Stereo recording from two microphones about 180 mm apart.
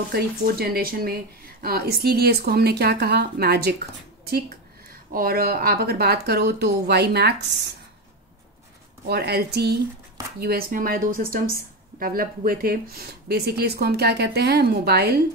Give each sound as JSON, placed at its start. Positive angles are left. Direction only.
{"t": 0.1, "sound": "speech", "side_deg": -60}
{"t": 5.1, "sound": "speech", "side_deg": -55}
{"t": 9.0, "sound": "speech", "side_deg": -65}